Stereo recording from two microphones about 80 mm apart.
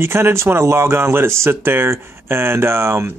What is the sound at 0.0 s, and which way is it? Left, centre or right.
Speech, right.